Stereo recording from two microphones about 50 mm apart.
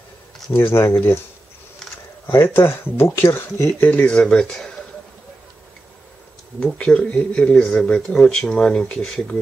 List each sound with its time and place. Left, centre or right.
0.5 s speech: left
2.2 s speech: left
4.0 s speech: centre
6.6 s speech: centre
7.5 s speech: centre